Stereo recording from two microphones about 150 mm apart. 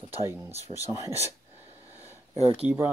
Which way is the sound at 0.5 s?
45° right (ahead or behind).